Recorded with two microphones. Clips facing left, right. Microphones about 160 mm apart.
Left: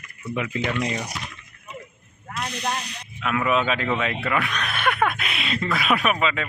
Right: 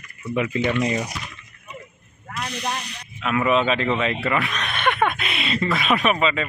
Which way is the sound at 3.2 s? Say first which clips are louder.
Right 3 dB; centre (ahead or behind).